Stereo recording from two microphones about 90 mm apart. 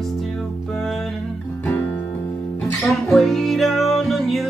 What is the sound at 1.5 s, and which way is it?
Music, 20° left (ahead or behind).